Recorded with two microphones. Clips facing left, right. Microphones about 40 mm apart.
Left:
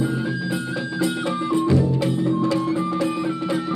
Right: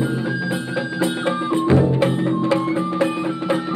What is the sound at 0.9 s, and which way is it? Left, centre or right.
Music, right.